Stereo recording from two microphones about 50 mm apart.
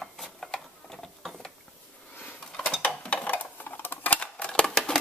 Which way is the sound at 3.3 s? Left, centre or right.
Left.